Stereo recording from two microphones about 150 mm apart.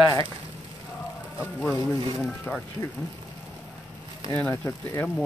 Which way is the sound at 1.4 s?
15° left (ahead or behind).